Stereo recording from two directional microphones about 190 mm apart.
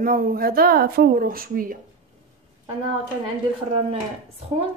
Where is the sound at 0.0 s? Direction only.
50° right (ahead or behind).